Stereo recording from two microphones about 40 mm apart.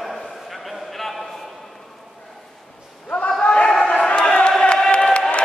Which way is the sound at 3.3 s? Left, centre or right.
Left.